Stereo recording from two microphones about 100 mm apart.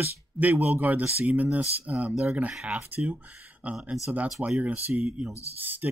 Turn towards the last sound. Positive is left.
turn(degrees=-20)  # may be behind; listen again after turning